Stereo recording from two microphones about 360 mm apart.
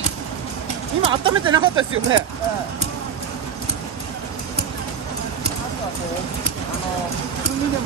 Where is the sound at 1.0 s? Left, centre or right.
Centre.